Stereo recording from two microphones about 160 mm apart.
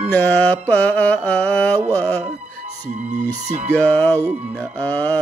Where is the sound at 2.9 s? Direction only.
50° right (ahead or behind).